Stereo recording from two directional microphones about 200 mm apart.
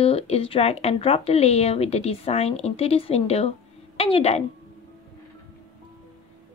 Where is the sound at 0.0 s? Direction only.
30° left (ahead or behind).